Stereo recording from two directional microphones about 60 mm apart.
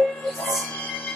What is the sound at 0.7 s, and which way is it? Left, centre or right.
Music, left.